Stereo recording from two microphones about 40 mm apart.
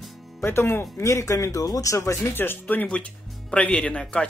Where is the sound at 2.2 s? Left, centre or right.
Left.